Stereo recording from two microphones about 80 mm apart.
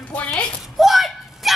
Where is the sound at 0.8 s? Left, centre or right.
Centre.